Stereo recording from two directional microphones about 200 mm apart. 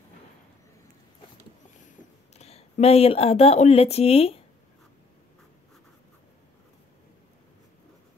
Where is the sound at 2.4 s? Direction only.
30° left (ahead or behind).